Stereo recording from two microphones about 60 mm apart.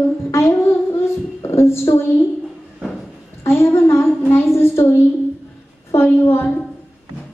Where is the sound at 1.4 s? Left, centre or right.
Left.